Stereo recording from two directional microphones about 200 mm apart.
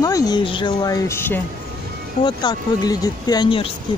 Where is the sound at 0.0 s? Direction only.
20° left (ahead or behind).